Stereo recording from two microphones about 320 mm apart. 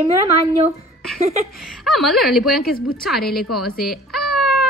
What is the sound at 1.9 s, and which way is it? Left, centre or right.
A woman's voice, centre.